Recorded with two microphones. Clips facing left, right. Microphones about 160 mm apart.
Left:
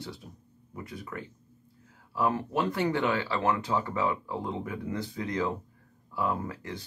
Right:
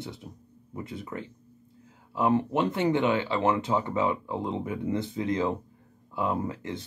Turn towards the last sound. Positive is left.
turn(degrees=-20)  # may be behind; listen again after turning